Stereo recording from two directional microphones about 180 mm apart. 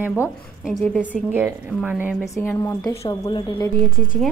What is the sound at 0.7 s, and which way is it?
A woman's voice, 5° right (ahead or behind).